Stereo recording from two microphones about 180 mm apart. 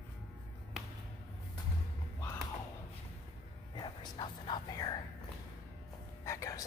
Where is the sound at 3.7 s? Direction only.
25° left (ahead or behind).